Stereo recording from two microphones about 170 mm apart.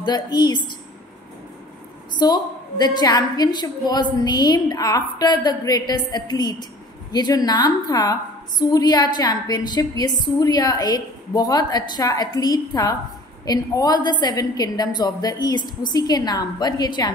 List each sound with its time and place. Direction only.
0.0 s a woman's voice: 25° left (ahead or behind)
2.1 s a woman's voice: 25° left (ahead or behind)